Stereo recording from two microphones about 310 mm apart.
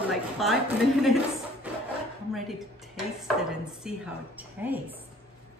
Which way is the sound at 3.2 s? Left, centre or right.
Centre.